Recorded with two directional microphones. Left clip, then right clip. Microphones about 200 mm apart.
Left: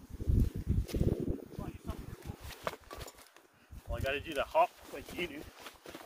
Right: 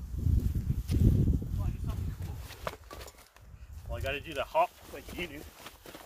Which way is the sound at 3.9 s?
35° right (ahead or behind).